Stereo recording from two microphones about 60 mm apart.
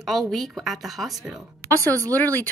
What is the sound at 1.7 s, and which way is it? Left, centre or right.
Speech, left.